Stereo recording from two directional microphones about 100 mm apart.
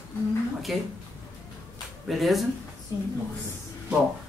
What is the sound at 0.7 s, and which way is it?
Speech, centre (ahead or behind).